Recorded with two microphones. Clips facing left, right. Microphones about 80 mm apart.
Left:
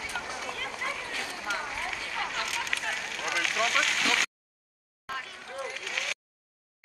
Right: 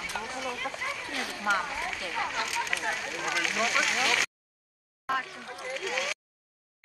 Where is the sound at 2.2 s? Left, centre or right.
Centre.